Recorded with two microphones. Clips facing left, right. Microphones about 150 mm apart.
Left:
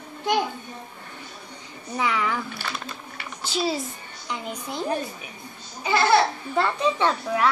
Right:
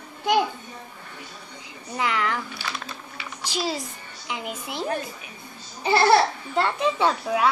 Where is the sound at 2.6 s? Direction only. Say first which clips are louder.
Left 1 dB; 55° left (ahead or behind).